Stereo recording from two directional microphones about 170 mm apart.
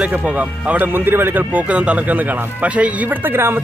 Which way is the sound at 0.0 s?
5° right (ahead or behind).